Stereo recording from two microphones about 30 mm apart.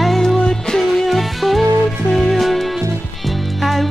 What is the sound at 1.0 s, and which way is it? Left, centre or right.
Music, centre.